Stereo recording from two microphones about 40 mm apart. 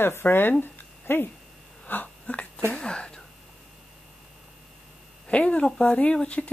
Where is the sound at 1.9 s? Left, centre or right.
Left.